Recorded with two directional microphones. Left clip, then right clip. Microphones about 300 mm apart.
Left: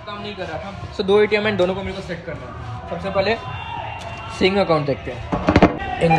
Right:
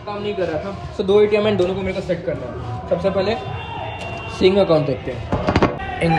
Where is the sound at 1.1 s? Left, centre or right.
Centre.